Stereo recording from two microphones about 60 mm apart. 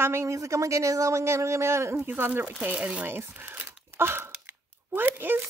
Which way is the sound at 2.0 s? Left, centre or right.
Right.